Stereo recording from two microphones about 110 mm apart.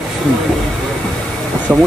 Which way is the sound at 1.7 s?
15° right (ahead or behind).